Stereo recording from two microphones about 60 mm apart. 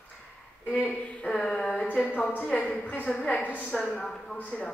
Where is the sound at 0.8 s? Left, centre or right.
Left.